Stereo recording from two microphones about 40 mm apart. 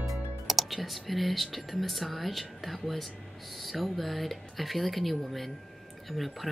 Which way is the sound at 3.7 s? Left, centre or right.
Centre.